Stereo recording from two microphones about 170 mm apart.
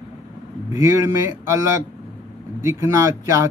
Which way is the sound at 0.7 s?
15° right (ahead or behind).